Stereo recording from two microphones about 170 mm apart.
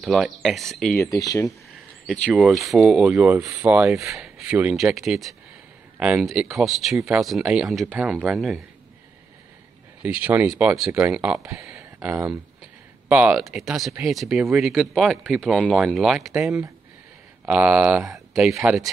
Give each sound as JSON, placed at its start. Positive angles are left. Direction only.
{"t": 0.0, "sound": "speech", "side_deg": 0}
{"t": 0.9, "sound": "speech", "side_deg": 20}
{"t": 2.0, "sound": "speech", "side_deg": 0}
{"t": 10.0, "sound": "speech", "side_deg": -10}